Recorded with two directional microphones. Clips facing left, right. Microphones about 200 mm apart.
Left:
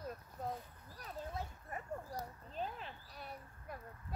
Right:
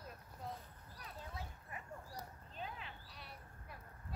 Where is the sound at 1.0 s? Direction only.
45° left (ahead or behind).